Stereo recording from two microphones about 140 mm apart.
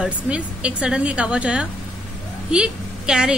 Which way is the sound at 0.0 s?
10° right (ahead or behind).